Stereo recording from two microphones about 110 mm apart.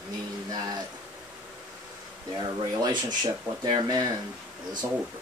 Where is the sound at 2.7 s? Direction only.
40° right (ahead or behind).